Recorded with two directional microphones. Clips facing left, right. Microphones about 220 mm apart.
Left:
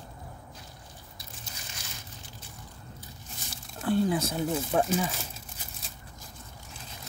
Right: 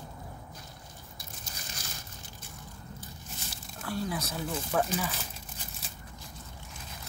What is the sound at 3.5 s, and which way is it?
Speech, 25° left (ahead or behind).